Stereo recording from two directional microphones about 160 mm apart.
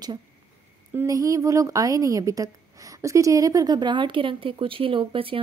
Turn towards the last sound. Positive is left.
turn(degrees=-35)  # may be behind; listen again after turning